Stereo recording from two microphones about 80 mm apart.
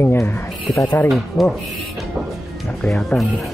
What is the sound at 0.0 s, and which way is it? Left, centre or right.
Speech, left.